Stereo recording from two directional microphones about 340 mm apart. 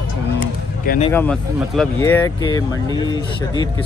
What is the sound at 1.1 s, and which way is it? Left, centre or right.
Speech, centre.